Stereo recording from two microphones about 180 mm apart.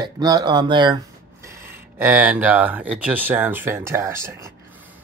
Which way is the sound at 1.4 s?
15° right (ahead or behind).